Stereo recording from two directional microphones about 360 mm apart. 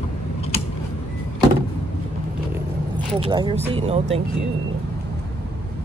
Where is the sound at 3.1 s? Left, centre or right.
Centre.